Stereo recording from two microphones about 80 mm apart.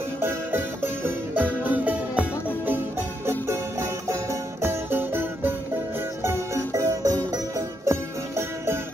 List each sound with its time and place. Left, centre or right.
0.2 s music: right
3.3 s music: right